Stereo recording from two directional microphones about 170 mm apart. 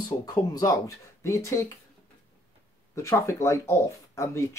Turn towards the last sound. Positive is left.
turn(degrees=15)  # may be behind; listen again after turning